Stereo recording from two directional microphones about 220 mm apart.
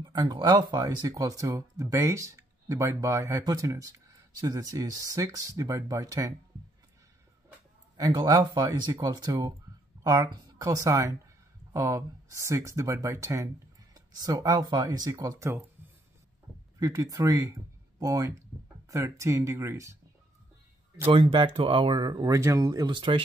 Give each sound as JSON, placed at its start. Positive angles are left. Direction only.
{"t": 0.0, "sound": "speech", "side_deg": -15}
{"t": 8.0, "sound": "speech", "side_deg": -15}
{"t": 16.8, "sound": "speech", "side_deg": -15}
{"t": 21.0, "sound": "speech", "side_deg": -25}